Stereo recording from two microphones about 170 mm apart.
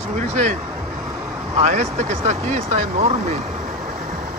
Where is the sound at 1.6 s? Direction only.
40° right (ahead or behind).